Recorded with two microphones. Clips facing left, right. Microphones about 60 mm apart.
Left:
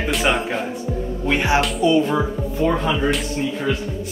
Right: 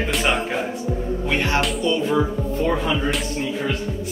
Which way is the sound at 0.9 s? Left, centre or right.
Centre.